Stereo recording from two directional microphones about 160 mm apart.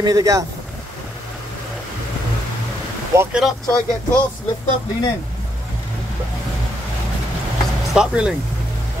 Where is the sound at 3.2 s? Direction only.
5° right (ahead or behind).